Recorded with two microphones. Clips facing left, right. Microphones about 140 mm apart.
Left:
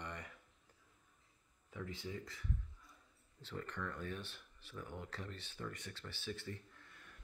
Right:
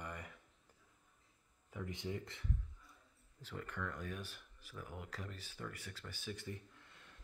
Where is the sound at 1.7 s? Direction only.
15° right (ahead or behind).